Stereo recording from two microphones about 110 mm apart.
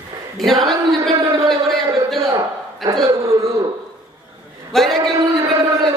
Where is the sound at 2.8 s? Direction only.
Centre (ahead or behind).